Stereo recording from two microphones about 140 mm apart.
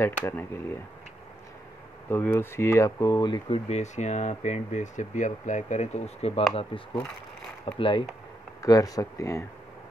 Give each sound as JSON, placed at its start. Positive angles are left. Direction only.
{"t": 0.0, "sound": "speech", "side_deg": 15}
{"t": 2.0, "sound": "speech", "side_deg": 15}
{"t": 8.6, "sound": "speech", "side_deg": 25}